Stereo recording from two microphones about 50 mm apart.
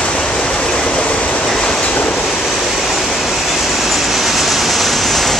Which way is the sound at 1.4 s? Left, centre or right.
Centre.